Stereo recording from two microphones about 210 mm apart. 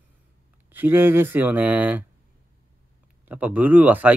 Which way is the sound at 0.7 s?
10° right (ahead or behind).